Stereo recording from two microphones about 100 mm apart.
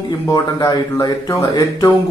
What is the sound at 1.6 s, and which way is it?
Speech, 40° left (ahead or behind).